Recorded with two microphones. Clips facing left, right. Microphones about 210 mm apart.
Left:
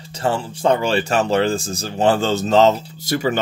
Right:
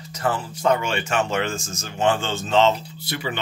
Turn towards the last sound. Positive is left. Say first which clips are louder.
# left 9 dB
turn(degrees=45)  # may be behind; listen again after turning